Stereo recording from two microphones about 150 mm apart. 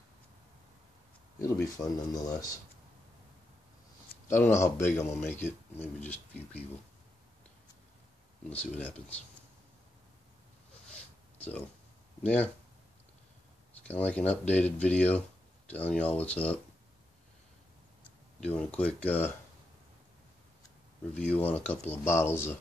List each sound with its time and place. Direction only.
1.4 s speech: 25° left (ahead or behind)
4.3 s a man's voice: 15° left (ahead or behind)
8.5 s a man's voice: 10° left (ahead or behind)
10.9 s a sound: 10° left (ahead or behind)
12.2 s speech: 10° left (ahead or behind)
13.8 s a man's voice: 10° left (ahead or behind)
18.0 s speech: 10° left (ahead or behind)
21.1 s a man's voice: 10° left (ahead or behind)